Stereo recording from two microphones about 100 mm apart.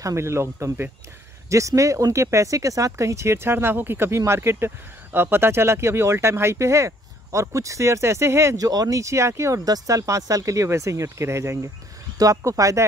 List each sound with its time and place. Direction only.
0.0 s speech: 25° right (ahead or behind)